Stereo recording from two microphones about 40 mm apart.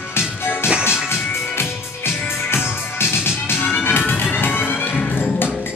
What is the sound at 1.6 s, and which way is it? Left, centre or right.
Music, left.